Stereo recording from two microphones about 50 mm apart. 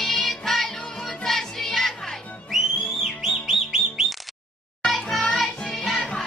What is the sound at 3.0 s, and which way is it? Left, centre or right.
Music, centre.